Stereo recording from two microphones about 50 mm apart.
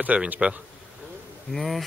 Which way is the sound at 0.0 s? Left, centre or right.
Right.